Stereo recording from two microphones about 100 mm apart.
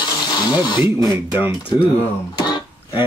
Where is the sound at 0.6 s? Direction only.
50° left (ahead or behind).